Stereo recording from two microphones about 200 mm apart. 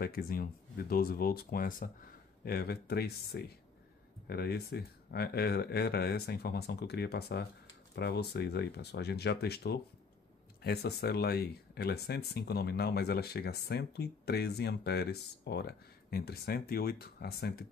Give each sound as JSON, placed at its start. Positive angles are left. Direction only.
{"t": 0.0, "sound": "speech", "side_deg": 50}